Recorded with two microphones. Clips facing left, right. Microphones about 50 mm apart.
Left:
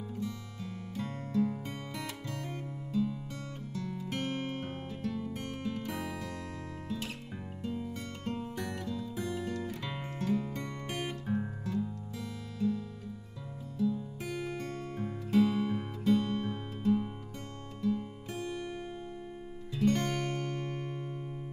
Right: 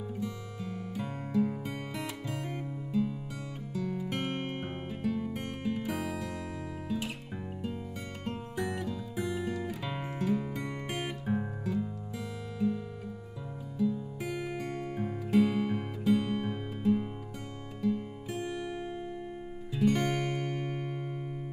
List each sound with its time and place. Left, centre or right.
0.9 s music: centre
8.3 s music: centre